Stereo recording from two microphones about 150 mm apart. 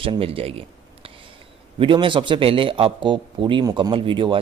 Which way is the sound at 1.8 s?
35° right (ahead or behind).